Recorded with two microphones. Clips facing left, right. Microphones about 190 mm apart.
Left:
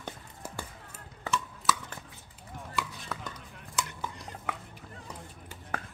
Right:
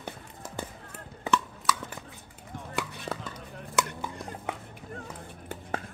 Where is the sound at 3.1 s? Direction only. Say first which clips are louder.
Right 4 dB; 65° right (ahead or behind).